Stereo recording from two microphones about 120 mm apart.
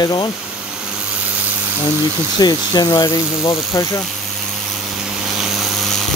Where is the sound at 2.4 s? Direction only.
35° left (ahead or behind).